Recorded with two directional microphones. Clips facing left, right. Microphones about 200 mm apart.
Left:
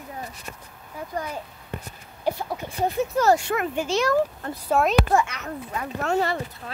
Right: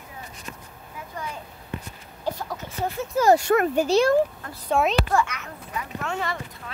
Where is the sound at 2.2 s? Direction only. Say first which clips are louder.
Left 3 dB; 10° left (ahead or behind).